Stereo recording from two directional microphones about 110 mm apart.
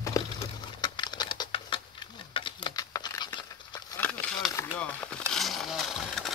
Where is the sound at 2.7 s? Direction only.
35° left (ahead or behind).